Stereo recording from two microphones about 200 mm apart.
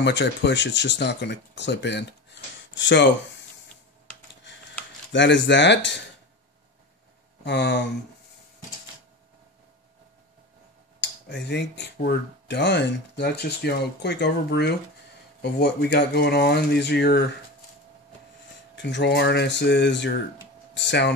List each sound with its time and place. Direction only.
0.0 s speech: 60° left (ahead or behind)
5.1 s speech: 65° left (ahead or behind)
7.4 s speech: 60° left (ahead or behind)
11.0 s speech: 60° left (ahead or behind)
18.8 s speech: 60° left (ahead or behind)